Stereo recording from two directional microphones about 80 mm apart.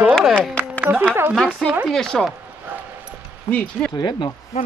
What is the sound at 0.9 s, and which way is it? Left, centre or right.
Music, right.